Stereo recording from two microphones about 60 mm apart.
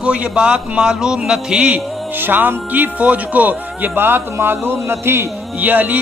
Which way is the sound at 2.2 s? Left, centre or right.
Right.